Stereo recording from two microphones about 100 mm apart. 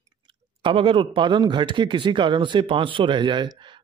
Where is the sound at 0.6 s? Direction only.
60° right (ahead or behind).